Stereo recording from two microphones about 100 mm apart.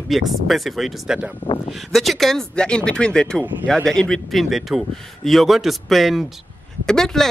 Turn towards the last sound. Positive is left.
turn(degrees=5)  # may be behind; listen again after turning